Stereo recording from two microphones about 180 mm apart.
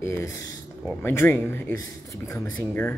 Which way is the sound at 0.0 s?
15° left (ahead or behind).